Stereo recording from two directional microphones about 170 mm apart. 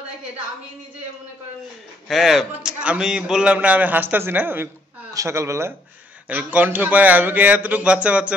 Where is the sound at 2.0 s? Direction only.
Centre (ahead or behind).